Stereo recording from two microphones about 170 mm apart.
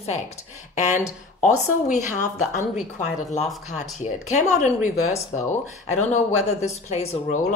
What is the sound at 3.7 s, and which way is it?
A woman's voice, 45° left (ahead or behind).